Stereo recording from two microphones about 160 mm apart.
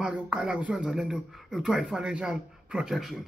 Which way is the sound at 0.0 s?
5° right (ahead or behind).